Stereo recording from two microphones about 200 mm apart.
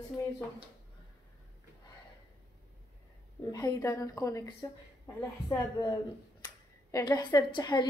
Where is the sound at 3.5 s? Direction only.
15° left (ahead or behind).